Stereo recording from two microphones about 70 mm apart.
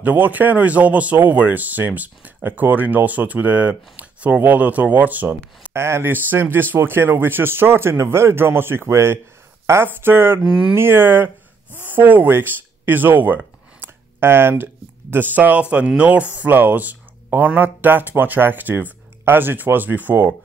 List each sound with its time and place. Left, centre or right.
0.0 s speech: right
5.7 s speech: right
10.4 s speech: centre
10.7 s speech: right
13.7 s a sound: right
16.0 s speech: centre